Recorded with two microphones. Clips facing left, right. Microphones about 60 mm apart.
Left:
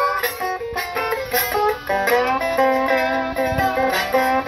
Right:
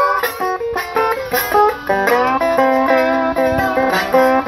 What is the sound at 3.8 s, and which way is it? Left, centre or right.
Music, right.